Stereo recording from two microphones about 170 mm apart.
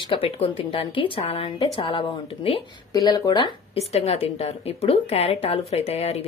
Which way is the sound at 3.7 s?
35° left (ahead or behind).